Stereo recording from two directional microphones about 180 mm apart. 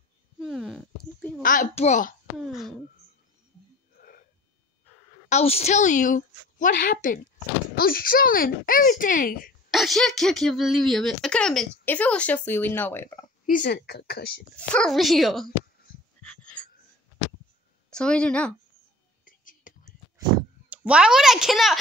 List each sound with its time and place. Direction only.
0.4 s a sound: centre (ahead or behind)
1.4 s a child's voice: 45° left (ahead or behind)
2.3 s cough: centre (ahead or behind)
4.0 s wheeze: 45° left (ahead or behind)
5.3 s a woman's voice: 35° left (ahead or behind); by 9.5 s 50° left (ahead or behind)
9.7 s speech: centre (ahead or behind)
13.5 s speech: 55° left (ahead or behind)
14.7 s speech: centre (ahead or behind)
16.2 s a sound: 5° left (ahead or behind)
17.8 s a woman's voice: 5° left (ahead or behind)
19.2 s whispering: 50° left (ahead or behind)
20.7 s speech: 5° right (ahead or behind)